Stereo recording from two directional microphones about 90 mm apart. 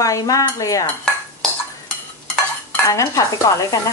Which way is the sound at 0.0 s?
40° left (ahead or behind).